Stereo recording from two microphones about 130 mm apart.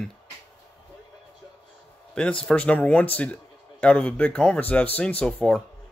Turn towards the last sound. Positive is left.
turn(degrees=10)  # may be behind; listen again after turning